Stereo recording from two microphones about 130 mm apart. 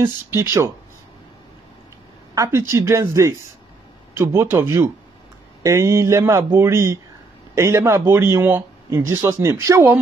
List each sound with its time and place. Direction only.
0.0 s speech: 20° right (ahead or behind)
2.3 s speech: 25° right (ahead or behind)